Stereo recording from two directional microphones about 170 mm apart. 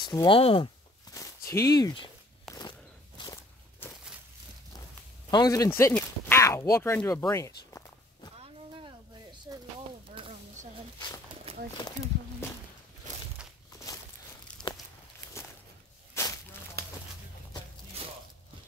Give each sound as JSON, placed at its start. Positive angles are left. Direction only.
{"t": 0.1, "sound": "speech", "side_deg": 30}
{"t": 1.5, "sound": "speech", "side_deg": 20}
{"t": 2.5, "sound": "walk", "side_deg": 0}
{"t": 3.2, "sound": "walk", "side_deg": 25}
{"t": 5.3, "sound": "speech", "side_deg": 20}
{"t": 9.5, "sound": "a sound", "side_deg": -20}
{"t": 11.5, "sound": "horse", "side_deg": -35}
{"t": 14.6, "sound": "a sound", "side_deg": 5}
{"t": 16.2, "sound": "a sound", "side_deg": 15}